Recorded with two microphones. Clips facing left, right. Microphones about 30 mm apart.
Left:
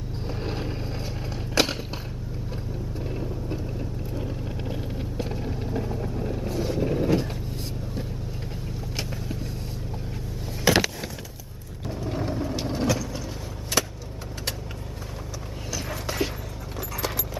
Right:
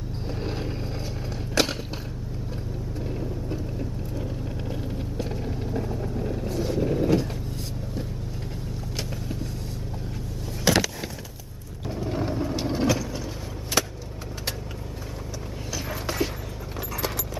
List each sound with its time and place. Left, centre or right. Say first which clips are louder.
0.3 s vehicle: even; centre
1.5 s skateboard: left 1 dB; centre
3.0 s vehicle: right 1 dB; centre
8.9 s vehicle: even; centre
10.6 s a sound: left 1 dB; centre
11.8 s vehicle: right 1 dB; centre
15.7 s a sound: even; centre